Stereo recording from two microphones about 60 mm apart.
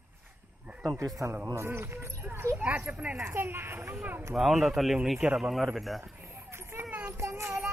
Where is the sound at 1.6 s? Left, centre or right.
Right.